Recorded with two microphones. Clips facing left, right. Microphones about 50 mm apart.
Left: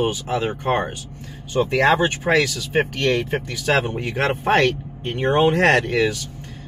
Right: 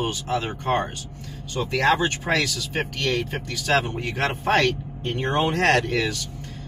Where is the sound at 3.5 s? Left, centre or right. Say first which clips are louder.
Left 1 dB; centre.